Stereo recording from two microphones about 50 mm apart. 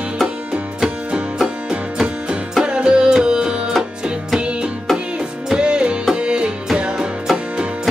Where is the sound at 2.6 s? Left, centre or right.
Centre.